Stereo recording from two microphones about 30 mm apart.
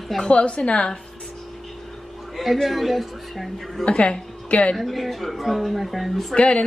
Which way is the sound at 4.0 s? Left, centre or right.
Left.